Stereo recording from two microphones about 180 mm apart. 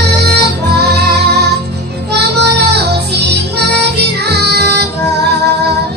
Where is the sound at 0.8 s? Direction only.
65° right (ahead or behind).